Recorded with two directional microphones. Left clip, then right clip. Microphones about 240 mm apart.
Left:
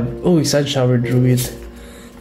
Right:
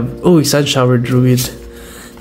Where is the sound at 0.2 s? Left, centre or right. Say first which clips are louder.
Right 5 dB; centre.